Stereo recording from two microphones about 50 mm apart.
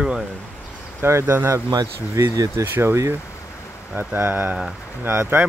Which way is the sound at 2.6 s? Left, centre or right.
Right.